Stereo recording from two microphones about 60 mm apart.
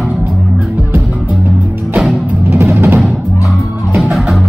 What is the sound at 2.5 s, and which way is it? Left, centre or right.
Music, right.